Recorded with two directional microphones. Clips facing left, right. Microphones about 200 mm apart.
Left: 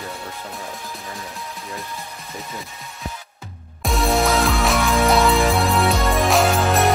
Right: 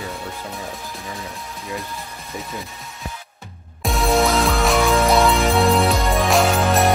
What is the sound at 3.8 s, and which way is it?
Music, centre (ahead or behind).